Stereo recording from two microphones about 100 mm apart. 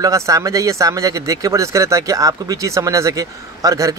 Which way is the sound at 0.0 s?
35° right (ahead or behind).